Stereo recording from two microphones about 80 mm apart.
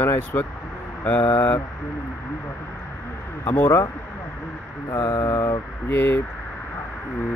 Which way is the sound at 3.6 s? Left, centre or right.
Left.